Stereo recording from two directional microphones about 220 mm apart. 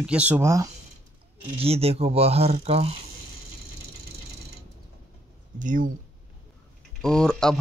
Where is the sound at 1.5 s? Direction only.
25° right (ahead or behind).